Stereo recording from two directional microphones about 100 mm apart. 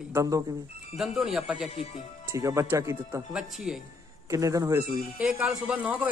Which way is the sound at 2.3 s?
30° right (ahead or behind).